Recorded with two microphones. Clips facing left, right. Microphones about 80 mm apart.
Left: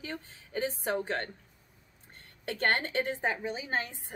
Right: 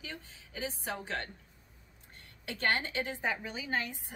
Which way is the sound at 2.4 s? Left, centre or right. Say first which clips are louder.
Left 3 dB; left.